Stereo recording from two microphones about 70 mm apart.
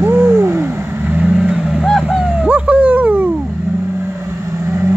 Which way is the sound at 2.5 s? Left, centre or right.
Right.